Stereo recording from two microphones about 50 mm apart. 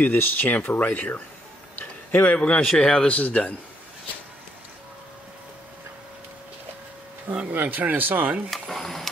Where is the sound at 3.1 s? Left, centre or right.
Left.